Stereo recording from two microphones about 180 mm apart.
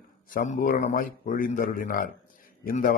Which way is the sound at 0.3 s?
45° left (ahead or behind).